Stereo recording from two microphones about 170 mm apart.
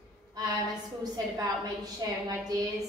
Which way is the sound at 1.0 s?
20° right (ahead or behind).